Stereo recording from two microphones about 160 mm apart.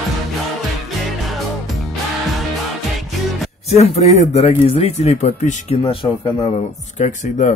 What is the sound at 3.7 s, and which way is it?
Speech, 40° left (ahead or behind).